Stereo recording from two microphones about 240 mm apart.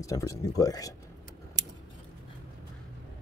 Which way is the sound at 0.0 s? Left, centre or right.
Centre.